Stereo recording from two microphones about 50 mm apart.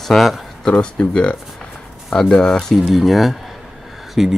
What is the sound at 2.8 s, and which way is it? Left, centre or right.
Speech, centre.